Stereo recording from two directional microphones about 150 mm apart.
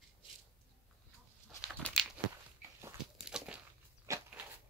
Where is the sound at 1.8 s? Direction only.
5° left (ahead or behind).